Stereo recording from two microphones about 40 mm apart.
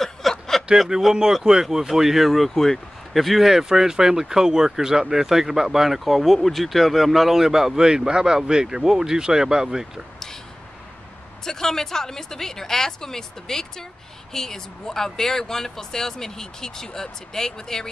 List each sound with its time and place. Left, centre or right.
0.0 s a sound: centre
0.9 s speech: right; by 3.5 s centre
3.5 s speech: centre
7.4 s speech: centre
11.4 s speech: centre